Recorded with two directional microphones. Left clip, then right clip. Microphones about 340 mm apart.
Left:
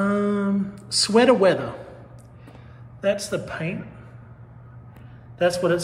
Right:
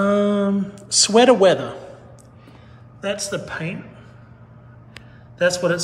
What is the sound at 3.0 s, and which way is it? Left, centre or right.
Speech, centre.